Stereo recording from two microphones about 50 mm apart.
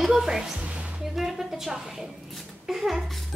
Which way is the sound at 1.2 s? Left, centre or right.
Centre.